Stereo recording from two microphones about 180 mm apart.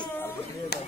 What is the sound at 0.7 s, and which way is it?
Speech, 60° left (ahead or behind).